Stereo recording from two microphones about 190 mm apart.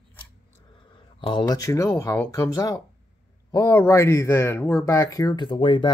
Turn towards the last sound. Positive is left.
turn(degrees=25)  # may be behind; listen again after turning